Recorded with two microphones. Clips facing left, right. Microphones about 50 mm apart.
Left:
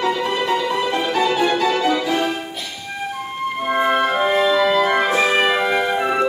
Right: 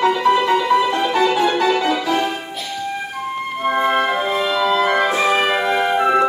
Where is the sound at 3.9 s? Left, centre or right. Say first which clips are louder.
Left 1 dB; centre.